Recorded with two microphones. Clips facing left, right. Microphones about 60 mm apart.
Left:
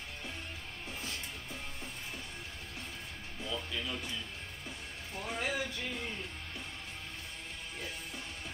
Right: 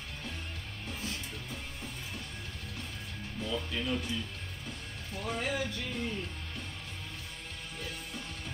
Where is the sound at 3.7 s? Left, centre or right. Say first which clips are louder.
Right 5 dB; centre.